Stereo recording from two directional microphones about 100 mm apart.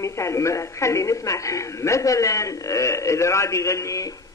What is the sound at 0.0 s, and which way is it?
A woman's voice, 30° left (ahead or behind).